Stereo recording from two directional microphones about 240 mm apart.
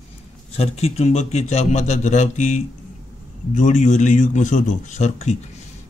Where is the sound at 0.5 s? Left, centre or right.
Left.